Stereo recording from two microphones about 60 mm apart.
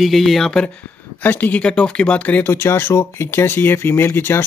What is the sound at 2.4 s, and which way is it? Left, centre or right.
Speech, left.